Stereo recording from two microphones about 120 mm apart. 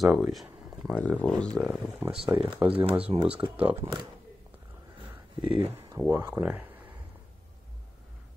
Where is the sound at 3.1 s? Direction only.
50° right (ahead or behind).